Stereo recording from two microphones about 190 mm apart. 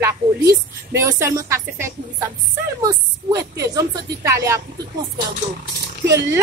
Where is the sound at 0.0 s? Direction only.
15° right (ahead or behind).